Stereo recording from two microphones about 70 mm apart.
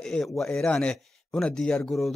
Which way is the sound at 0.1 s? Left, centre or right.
Centre.